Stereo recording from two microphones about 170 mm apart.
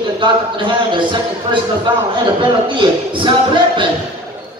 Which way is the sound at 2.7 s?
30° right (ahead or behind).